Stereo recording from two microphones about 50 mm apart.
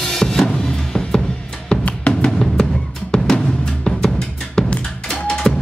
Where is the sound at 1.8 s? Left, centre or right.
Left; by 5.5 s centre.